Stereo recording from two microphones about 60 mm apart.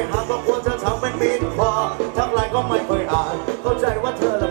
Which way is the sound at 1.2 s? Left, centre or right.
Centre.